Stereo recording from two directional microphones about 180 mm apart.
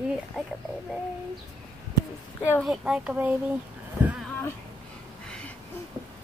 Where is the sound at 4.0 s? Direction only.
10° right (ahead or behind).